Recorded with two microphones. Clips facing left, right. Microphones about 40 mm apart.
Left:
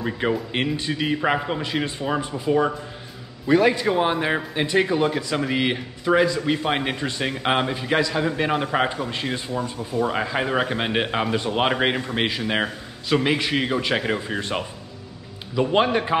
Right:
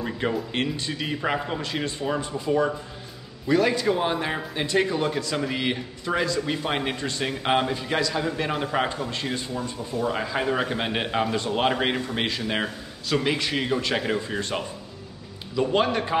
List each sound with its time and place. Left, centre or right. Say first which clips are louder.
0.0 s a man's voice: left 3 dB; centre